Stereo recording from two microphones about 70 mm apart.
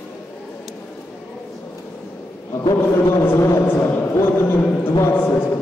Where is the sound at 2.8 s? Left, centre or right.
Left.